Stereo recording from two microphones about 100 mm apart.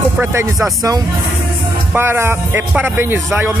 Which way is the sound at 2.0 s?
25° right (ahead or behind).